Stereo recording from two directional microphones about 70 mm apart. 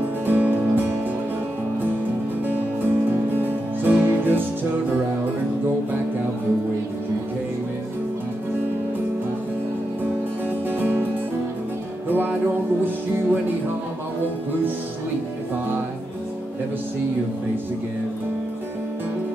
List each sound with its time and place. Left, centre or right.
0.3 s music: right
2.4 s music: right
10.7 s music: right
12.1 s music: right